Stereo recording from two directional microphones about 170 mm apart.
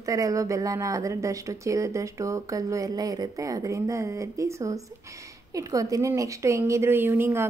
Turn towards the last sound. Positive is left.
turn(degrees=-15)  # may be behind; listen again after turning